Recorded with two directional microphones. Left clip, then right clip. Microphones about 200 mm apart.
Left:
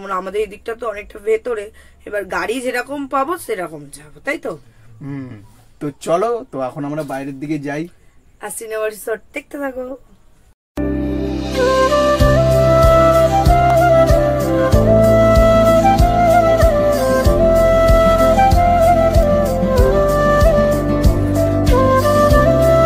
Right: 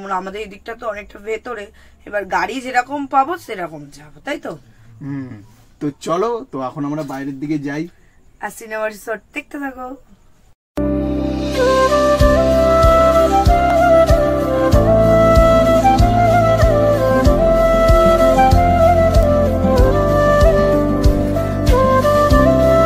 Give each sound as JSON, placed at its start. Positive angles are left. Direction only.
{"t": 0.0, "sound": "speech", "side_deg": 20}
{"t": 5.8, "sound": "speech", "side_deg": 0}
{"t": 8.4, "sound": "speech", "side_deg": 25}
{"t": 10.7, "sound": "music", "side_deg": 0}